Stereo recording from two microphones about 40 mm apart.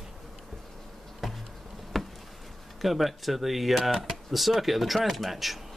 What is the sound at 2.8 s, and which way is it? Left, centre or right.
Speech, centre.